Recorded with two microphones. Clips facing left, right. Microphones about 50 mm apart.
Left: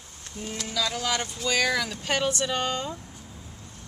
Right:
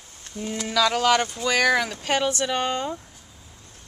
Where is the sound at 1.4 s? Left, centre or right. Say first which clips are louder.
Right 1 dB; right.